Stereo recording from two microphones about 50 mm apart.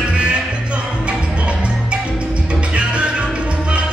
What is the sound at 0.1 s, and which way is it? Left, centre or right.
Music, right.